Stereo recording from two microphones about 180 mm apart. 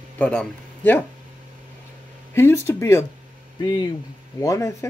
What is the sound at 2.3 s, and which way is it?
Speech, 15° left (ahead or behind).